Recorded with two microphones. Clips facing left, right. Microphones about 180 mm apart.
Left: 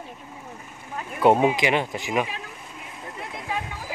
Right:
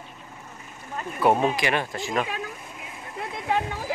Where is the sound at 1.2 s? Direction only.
20° left (ahead or behind).